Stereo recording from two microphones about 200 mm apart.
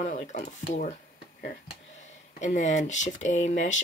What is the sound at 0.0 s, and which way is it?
Speech, 35° left (ahead or behind).